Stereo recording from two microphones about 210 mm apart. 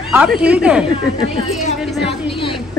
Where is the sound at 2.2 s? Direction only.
25° left (ahead or behind).